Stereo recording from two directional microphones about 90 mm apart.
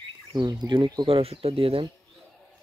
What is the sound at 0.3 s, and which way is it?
Speech, 55° right (ahead or behind).